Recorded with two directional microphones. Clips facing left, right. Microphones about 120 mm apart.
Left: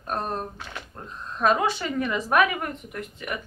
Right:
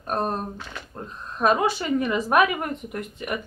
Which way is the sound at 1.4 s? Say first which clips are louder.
Right 1 dB; 10° right (ahead or behind).